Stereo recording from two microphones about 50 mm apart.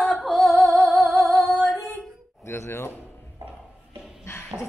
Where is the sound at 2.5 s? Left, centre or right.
Left.